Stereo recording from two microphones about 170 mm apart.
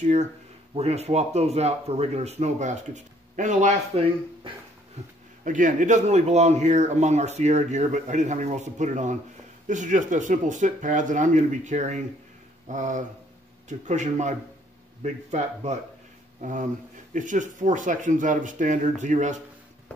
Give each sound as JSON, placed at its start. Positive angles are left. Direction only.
{"t": 0.0, "sound": "a man's voice", "side_deg": -40}
{"t": 5.4, "sound": "a man's voice", "side_deg": -50}
{"t": 15.3, "sound": "a man's voice", "side_deg": -40}